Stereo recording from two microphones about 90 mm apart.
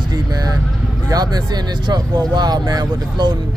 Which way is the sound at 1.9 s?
50° right (ahead or behind).